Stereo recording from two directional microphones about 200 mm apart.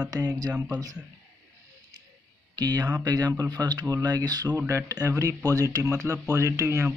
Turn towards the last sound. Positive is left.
turn(degrees=-15)  # may be behind; listen again after turning